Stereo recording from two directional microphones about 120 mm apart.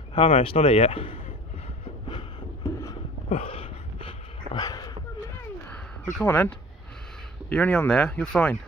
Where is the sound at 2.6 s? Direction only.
30° left (ahead or behind).